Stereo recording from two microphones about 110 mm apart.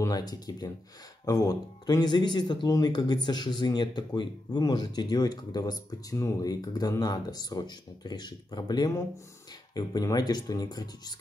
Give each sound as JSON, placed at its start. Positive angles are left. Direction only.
{"t": 0.0, "sound": "speech", "side_deg": 35}